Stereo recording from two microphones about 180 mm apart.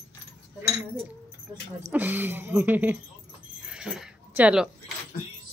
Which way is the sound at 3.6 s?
5° right (ahead or behind).